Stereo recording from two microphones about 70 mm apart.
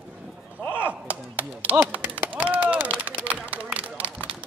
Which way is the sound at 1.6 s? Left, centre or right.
Right.